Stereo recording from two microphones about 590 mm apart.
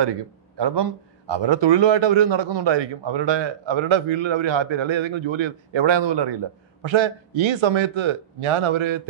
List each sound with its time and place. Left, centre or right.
0.0 s a man's voice: right